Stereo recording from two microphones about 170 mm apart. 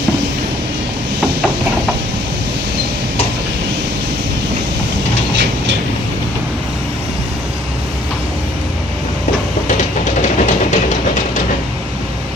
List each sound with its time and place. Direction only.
10.2 s train: 45° left (ahead or behind)